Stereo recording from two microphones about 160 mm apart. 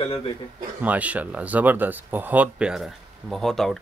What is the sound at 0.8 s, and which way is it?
Speech, 10° right (ahead or behind).